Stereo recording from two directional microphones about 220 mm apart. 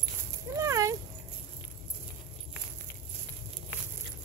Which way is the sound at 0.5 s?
15° right (ahead or behind).